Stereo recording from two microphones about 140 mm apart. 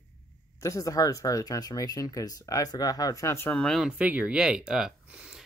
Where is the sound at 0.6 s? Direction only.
25° left (ahead or behind).